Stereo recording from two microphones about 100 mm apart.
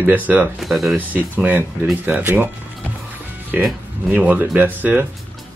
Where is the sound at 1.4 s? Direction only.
15° right (ahead or behind).